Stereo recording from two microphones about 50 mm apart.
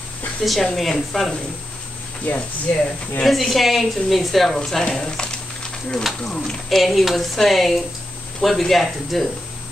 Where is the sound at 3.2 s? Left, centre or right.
Centre.